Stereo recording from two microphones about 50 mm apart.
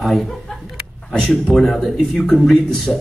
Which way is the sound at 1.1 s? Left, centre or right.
Centre.